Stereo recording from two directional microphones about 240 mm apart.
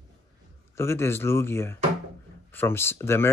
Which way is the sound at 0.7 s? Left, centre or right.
Centre.